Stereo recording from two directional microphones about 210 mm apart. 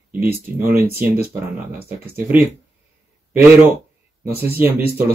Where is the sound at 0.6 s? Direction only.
10° right (ahead or behind).